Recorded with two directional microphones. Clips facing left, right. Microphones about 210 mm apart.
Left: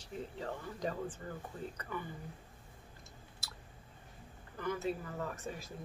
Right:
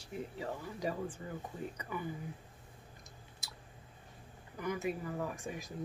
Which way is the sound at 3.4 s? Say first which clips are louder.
Even; 15° right (ahead or behind).